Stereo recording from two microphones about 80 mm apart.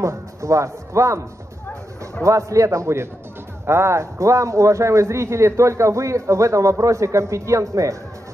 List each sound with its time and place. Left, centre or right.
0.0 s speech: right
2.2 s speech: right